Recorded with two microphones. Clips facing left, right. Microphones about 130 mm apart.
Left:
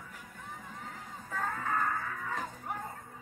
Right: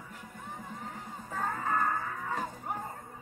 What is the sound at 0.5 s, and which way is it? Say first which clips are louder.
Music: right 4 dB; 35° right (ahead or behind).